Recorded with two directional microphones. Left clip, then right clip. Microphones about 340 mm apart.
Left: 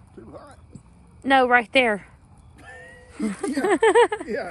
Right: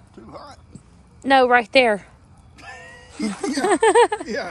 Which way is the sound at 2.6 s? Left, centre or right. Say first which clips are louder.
Right 4 dB; right.